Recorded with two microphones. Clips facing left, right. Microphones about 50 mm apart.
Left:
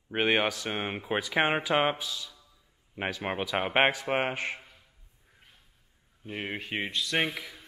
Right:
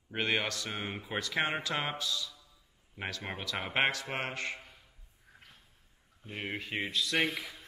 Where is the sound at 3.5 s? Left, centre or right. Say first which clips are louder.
Left 5 dB; left.